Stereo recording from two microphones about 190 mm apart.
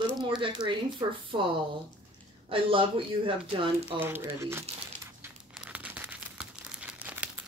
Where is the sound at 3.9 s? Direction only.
10° right (ahead or behind).